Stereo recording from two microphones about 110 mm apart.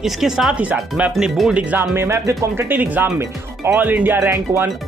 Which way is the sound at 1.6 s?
15° right (ahead or behind).